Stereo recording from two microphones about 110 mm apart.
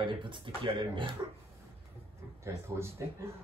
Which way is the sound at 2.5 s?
25° right (ahead or behind).